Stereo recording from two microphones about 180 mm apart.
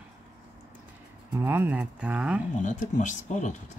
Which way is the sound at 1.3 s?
10° right (ahead or behind).